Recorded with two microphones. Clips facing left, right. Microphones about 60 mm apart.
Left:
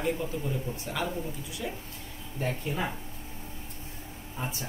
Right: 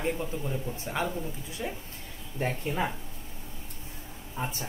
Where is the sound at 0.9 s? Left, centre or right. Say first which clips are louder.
Right 2 dB; right.